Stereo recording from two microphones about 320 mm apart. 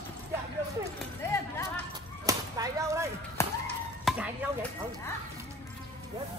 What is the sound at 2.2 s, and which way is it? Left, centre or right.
Whip, centre.